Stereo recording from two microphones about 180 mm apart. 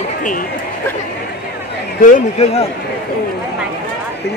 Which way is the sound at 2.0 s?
40° left (ahead or behind).